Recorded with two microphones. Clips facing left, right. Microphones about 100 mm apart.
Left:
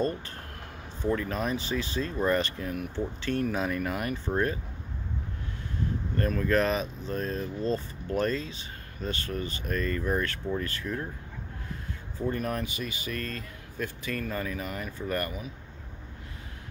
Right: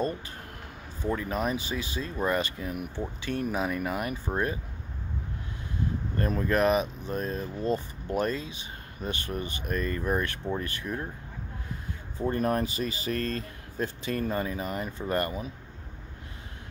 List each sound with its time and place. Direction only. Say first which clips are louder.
1.0 s speech: even; 15° right (ahead or behind)
6.1 s speech: left 1 dB; 20° right (ahead or behind)
12.2 s speech: right 4 dB; 35° right (ahead or behind)